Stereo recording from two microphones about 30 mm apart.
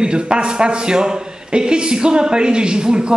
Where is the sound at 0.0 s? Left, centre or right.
Right.